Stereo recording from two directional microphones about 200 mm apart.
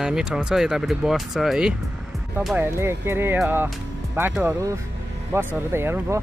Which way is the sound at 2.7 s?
10° right (ahead or behind).